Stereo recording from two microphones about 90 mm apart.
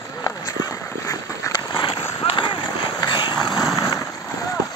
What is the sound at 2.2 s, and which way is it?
Run, 65° left (ahead or behind).